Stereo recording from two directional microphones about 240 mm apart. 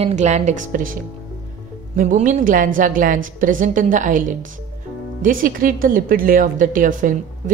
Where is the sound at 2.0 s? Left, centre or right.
Right.